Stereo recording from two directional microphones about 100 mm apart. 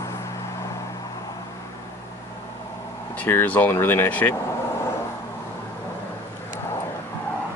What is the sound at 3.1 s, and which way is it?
Speech, 20° left (ahead or behind).